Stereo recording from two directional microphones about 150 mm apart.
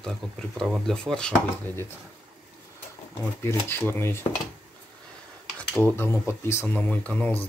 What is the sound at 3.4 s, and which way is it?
Speech, 15° left (ahead or behind).